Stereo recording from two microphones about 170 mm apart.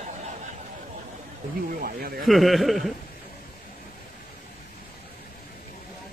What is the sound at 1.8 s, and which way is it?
Speech, 65° right (ahead or behind).